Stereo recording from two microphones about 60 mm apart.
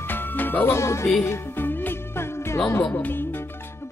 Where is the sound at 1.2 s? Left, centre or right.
Left.